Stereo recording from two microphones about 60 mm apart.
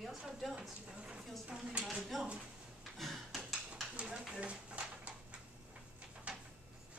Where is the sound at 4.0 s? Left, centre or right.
Centre.